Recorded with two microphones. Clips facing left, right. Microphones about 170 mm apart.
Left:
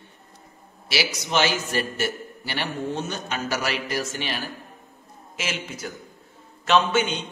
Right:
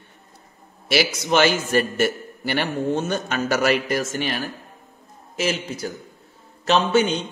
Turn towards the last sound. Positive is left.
turn(degrees=-35)  # may be behind; listen again after turning